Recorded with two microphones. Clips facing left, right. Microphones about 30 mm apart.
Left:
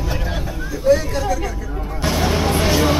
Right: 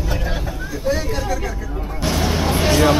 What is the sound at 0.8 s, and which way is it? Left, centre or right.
Speech, centre.